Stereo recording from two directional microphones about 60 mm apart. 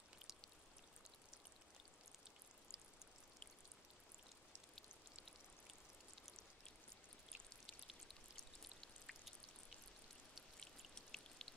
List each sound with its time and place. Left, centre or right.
2.7 s pour: centre
8.4 s raindrop: centre
10.3 s raindrop: centre